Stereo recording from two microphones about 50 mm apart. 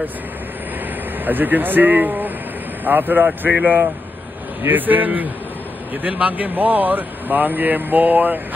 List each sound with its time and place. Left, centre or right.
1.2 s speech: right